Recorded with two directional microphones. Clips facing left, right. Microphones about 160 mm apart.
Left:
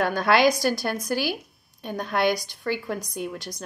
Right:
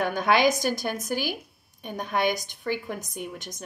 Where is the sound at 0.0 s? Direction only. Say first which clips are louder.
Left 2 dB; 20° right (ahead or behind).